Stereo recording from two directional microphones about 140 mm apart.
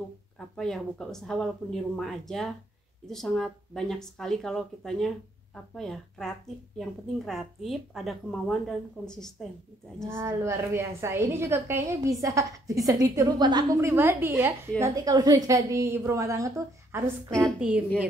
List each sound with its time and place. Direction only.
0.6 s a woman's voice: 5° left (ahead or behind)
10.0 s a woman's voice: 20° right (ahead or behind)
13.7 s a woman's voice: 15° right (ahead or behind)
14.8 s a woman's voice: 30° right (ahead or behind)
17.6 s a woman's voice: 10° right (ahead or behind)